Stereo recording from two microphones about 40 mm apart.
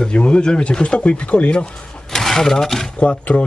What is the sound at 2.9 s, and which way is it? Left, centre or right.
Speech, left.